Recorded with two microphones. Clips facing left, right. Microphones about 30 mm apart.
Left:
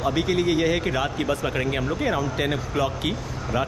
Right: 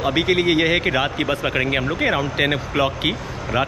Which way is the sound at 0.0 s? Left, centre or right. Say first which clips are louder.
Right 4 dB; right.